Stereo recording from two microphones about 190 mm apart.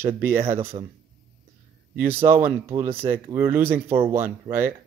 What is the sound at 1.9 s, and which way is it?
Speech, 10° right (ahead or behind).